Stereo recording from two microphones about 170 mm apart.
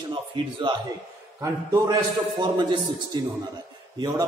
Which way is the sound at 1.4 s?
20° right (ahead or behind).